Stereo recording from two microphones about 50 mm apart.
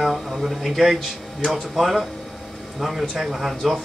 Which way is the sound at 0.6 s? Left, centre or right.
Centre.